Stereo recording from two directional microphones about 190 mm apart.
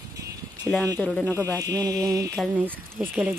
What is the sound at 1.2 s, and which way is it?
Speech, 15° right (ahead or behind).